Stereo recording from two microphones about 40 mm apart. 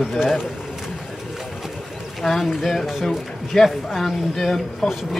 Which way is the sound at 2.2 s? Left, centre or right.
Centre.